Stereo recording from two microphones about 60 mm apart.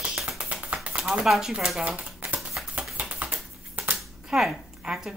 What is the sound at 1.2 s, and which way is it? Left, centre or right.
Speech, centre.